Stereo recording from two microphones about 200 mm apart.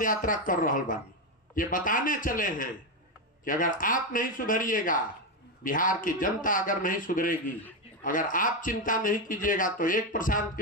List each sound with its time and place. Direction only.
0.0 s speech: 40° left (ahead or behind)